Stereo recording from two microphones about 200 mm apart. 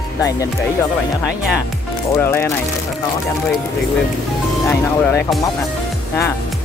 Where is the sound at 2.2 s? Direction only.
10° left (ahead or behind).